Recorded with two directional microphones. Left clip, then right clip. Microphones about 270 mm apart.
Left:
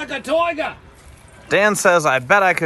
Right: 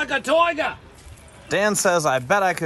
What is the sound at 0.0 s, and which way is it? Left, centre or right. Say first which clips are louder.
A man's voice: right 1 dB; centre.